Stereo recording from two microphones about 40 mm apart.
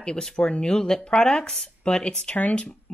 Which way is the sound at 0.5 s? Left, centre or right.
Left.